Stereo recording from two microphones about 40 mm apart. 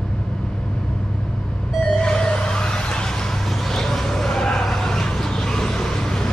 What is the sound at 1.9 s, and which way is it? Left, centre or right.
Vehicle, centre.